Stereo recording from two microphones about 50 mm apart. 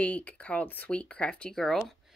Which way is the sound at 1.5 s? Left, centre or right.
Centre.